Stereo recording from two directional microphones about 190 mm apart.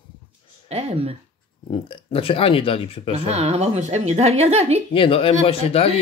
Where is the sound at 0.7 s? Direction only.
35° right (ahead or behind).